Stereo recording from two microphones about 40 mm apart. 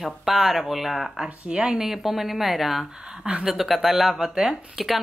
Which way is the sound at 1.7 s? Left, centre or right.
Centre.